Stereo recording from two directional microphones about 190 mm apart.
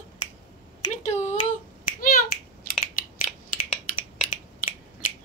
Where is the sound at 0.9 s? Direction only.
40° left (ahead or behind).